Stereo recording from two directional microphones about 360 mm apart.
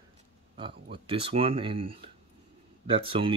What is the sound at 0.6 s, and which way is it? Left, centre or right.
Speech, centre.